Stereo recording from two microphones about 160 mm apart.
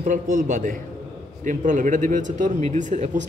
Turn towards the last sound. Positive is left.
turn(degrees=-45)  # may be behind; listen again after turning